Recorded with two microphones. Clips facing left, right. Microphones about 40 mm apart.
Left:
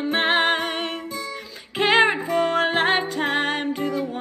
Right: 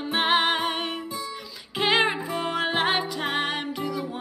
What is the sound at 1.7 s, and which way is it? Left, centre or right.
Music, left.